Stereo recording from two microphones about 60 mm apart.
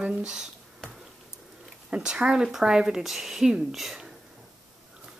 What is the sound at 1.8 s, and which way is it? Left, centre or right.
A woman's voice, centre.